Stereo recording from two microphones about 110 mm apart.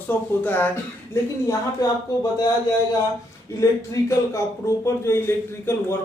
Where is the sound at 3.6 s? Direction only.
30° left (ahead or behind).